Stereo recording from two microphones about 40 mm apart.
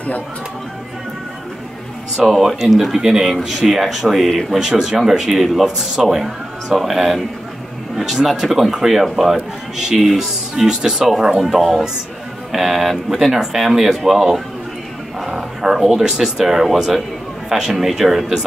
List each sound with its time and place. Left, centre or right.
2.1 s speech: centre
11.4 s speech: centre
15.1 s a sound: centre
15.6 s speech: centre